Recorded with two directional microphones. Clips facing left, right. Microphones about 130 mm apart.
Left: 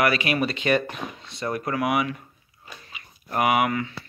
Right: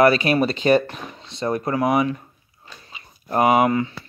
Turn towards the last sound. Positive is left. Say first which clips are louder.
# right 5 dB
turn(degrees=-30)  # may be behind; listen again after turning